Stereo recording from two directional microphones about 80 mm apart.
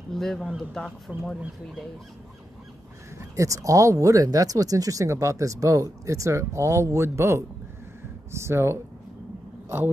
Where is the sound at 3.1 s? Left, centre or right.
Right.